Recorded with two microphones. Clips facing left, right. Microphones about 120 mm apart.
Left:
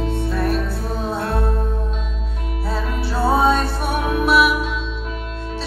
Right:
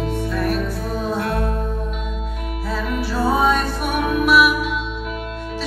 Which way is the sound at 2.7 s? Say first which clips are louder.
Right 1 dB; 30° left (ahead or behind).